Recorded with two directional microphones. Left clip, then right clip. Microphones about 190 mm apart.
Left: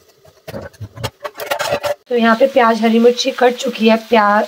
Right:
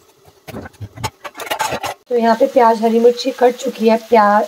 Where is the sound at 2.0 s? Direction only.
5° right (ahead or behind).